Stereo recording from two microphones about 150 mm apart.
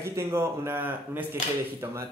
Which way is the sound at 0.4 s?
15° right (ahead or behind).